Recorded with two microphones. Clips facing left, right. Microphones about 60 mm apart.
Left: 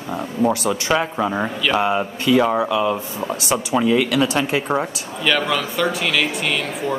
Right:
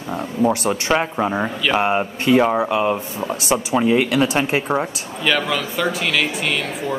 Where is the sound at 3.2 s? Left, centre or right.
Centre.